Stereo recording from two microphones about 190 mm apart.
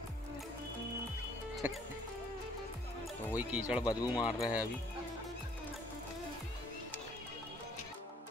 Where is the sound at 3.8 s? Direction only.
20° left (ahead or behind).